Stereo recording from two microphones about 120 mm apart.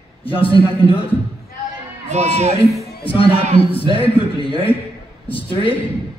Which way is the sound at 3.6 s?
50° left (ahead or behind).